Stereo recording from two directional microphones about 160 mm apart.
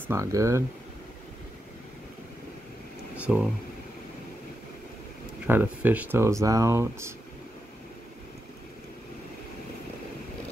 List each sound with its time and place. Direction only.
0.0 s speech: 15° right (ahead or behind)
3.2 s a sound: 10° right (ahead or behind)
5.5 s speech: 10° right (ahead or behind)